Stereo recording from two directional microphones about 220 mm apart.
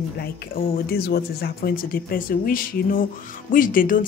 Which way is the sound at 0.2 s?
45° left (ahead or behind).